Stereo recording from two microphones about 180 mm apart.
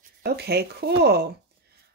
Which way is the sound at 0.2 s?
65° right (ahead or behind).